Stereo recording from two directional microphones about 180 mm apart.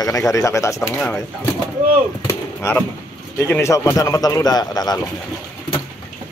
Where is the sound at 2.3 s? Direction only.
15° left (ahead or behind).